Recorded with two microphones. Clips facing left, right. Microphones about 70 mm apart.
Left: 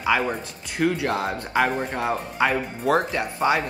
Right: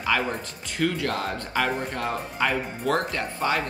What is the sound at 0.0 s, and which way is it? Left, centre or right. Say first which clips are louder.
Speech: left 3 dB; centre.